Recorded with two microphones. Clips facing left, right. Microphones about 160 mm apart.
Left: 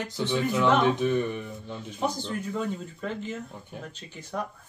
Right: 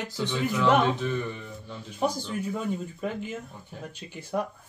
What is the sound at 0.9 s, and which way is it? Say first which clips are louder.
Speech: left 5 dB; 15° left (ahead or behind).